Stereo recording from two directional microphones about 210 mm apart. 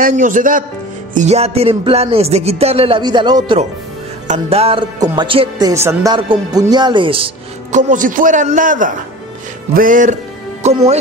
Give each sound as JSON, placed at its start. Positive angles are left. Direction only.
{"t": 0.0, "sound": "a man's voice", "side_deg": -40}
{"t": 7.7, "sound": "a man's voice", "side_deg": -40}